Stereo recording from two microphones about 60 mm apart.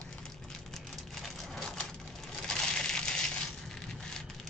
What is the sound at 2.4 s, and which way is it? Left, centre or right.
Crushing, centre.